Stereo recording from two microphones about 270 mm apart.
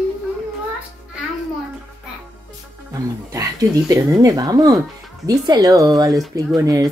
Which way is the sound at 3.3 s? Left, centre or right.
Centre.